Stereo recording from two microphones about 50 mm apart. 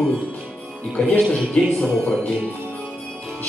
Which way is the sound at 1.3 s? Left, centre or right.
Centre.